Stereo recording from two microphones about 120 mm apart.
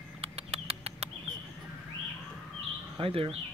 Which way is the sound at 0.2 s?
60° right (ahead or behind).